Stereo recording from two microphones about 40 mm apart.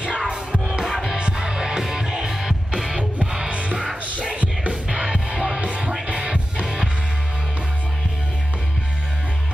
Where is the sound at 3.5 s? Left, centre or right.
Right.